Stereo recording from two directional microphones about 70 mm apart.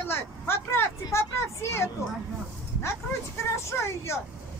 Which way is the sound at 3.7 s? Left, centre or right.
Left.